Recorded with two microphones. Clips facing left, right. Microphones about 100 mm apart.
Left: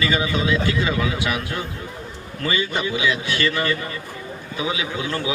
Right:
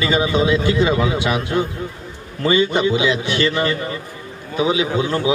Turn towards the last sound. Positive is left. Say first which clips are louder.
# right 7 dB
turn(degrees=-25)  # may be behind; listen again after turning